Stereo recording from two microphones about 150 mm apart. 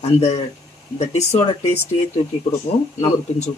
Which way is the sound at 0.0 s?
50° left (ahead or behind).